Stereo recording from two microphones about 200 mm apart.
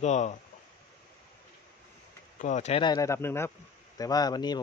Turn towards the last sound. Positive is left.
turn(degrees=20)  # may be behind; listen again after turning